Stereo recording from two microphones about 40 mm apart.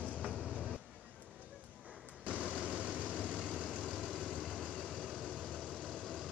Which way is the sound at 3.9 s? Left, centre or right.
Centre.